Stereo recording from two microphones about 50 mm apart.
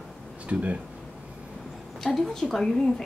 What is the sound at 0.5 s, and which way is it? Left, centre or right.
Speech, right.